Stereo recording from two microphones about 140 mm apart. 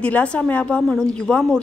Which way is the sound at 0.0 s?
10° left (ahead or behind).